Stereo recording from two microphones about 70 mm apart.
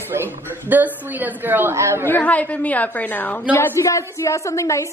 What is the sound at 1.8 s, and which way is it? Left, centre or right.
Speech, right.